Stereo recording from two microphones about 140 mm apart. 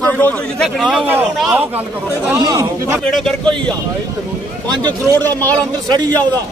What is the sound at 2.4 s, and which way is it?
Speech, 25° right (ahead or behind).